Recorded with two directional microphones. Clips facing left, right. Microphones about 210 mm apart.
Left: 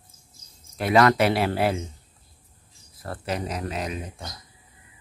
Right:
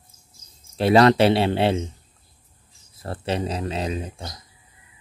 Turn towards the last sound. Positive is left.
turn(degrees=-30)  # may be behind; listen again after turning